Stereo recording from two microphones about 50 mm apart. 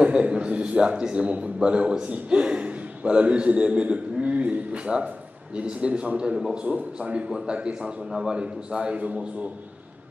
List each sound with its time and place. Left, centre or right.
0.0 s a man's voice: right
6.3 s a man's voice: centre
6.6 s a man's voice: right